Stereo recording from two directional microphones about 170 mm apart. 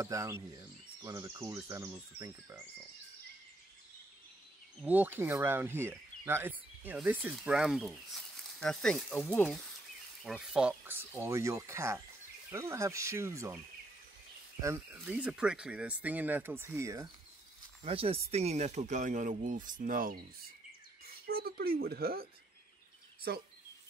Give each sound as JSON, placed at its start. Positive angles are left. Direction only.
{"t": 0.0, "sound": "speech", "side_deg": -20}
{"t": 4.8, "sound": "speech", "side_deg": -10}
{"t": 10.2, "sound": "speech", "side_deg": 0}
{"t": 14.6, "sound": "speech", "side_deg": -15}
{"t": 17.8, "sound": "speech", "side_deg": -35}
{"t": 21.1, "sound": "speech", "side_deg": -65}